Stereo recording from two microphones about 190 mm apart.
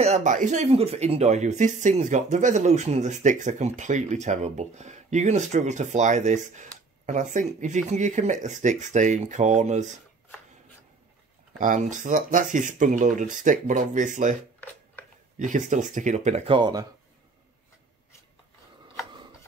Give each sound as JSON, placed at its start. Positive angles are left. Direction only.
{"t": 0.0, "sound": "speech", "side_deg": -40}
{"t": 11.5, "sound": "speech", "side_deg": -45}
{"t": 15.3, "sound": "speech", "side_deg": -40}
{"t": 16.5, "sound": "speech", "side_deg": -25}